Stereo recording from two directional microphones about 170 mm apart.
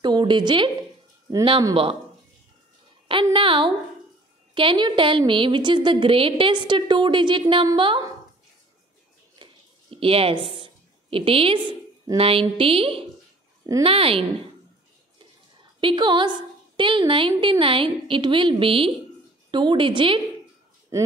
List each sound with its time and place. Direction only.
0.0 s a woman's voice: 25° right (ahead or behind)
3.3 s a woman's voice: 30° right (ahead or behind)
9.3 s a sound: 30° right (ahead or behind)
12.2 s a woman's voice: 35° right (ahead or behind)
15.8 s a woman's voice: 25° right (ahead or behind)